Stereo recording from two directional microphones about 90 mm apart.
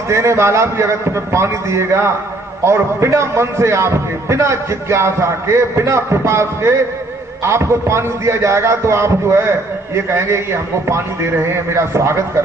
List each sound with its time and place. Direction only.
0.1 s a man's voice: 30° right (ahead or behind)